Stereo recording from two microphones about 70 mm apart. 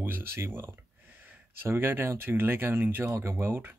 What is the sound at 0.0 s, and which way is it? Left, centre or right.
Speech, right.